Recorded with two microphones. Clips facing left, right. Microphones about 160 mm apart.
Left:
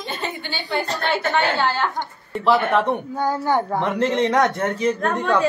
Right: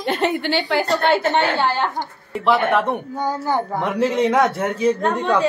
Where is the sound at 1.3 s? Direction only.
15° right (ahead or behind).